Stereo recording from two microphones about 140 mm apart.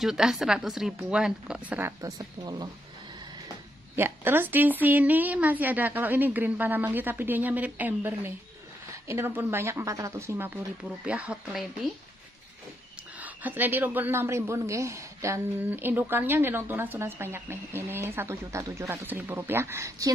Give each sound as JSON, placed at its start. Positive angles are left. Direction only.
{"t": 0.0, "sound": "speech", "side_deg": -5}
{"t": 3.9, "sound": "a woman's voice", "side_deg": -15}
{"t": 13.2, "sound": "a woman's voice", "side_deg": -15}